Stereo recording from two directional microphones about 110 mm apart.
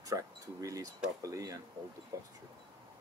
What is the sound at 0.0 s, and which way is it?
Speech, 35° right (ahead or behind).